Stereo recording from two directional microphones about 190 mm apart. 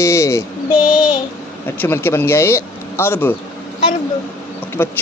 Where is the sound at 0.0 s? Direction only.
15° left (ahead or behind).